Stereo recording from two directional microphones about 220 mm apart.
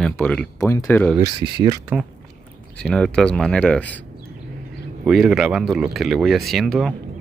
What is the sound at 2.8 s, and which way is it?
Speech, 5° left (ahead or behind).